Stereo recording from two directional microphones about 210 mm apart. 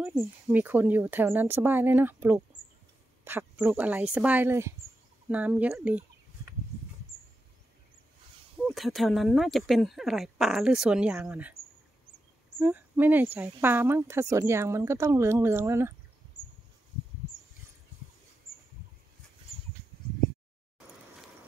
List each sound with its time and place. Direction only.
0.0 s speech: 10° right (ahead or behind)
8.6 s speech: centre (ahead or behind)
12.5 s speech: 10° right (ahead or behind)
16.3 s a sound: 90° left